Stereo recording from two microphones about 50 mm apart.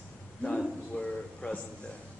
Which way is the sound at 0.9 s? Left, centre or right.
Left.